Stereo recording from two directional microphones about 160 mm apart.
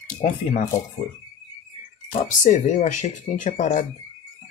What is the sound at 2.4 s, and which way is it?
Speech, 50° left (ahead or behind).